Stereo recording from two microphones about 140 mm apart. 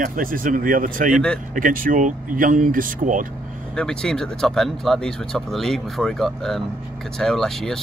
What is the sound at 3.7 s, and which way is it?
Speech, 5° left (ahead or behind).